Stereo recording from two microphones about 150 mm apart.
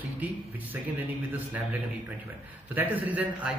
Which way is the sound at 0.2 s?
10° right (ahead or behind).